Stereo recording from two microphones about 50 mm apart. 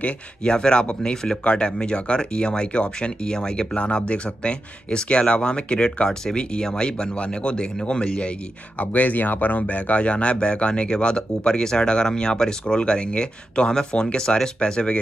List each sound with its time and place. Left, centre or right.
0.0 s speech: centre
8.7 s speech: left